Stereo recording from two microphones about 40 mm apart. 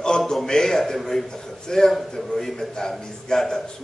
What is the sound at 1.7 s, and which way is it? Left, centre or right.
Speech, centre.